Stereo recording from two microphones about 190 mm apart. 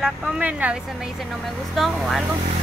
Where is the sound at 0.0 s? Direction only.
5° right (ahead or behind).